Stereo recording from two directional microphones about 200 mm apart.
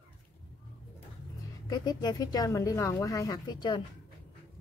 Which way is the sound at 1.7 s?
20° left (ahead or behind).